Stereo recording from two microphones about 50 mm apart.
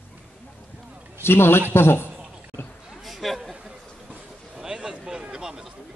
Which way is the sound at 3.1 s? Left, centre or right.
Centre.